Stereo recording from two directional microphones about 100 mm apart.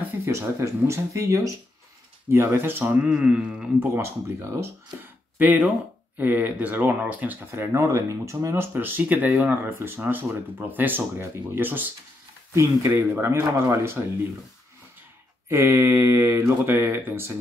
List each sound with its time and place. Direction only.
0.2 s speech: 30° right (ahead or behind)
2.9 s speech: 10° right (ahead or behind)
3.8 s speech: 25° right (ahead or behind)
5.4 s speech: 15° right (ahead or behind); by 8.6 s 30° right (ahead or behind)
8.7 s speech: 20° right (ahead or behind)
15.4 s speech: 25° right (ahead or behind)